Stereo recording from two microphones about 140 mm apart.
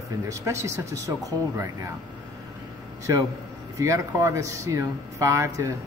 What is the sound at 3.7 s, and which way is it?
A man's voice, 20° right (ahead or behind).